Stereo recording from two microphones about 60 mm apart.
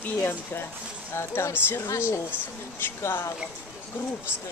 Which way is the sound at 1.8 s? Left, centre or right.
Left.